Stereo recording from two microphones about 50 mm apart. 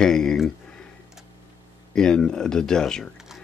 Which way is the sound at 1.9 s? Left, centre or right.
Centre.